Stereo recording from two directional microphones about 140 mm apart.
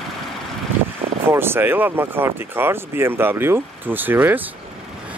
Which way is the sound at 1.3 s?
15° right (ahead or behind).